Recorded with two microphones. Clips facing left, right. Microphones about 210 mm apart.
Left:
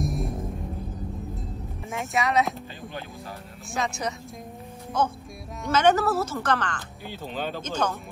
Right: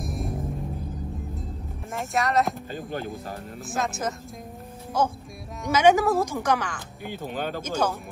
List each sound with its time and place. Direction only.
0.0 s music: centre (ahead or behind)
1.9 s speech: centre (ahead or behind)
2.7 s speech: 45° right (ahead or behind)
3.7 s a woman's voice: centre (ahead or behind)